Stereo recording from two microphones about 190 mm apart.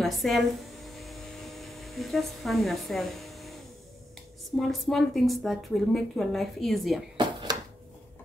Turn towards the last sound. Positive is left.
turn(degrees=-25)  # may be behind; listen again after turning